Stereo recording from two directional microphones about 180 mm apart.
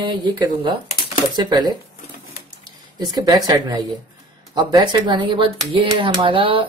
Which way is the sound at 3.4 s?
20° right (ahead or behind).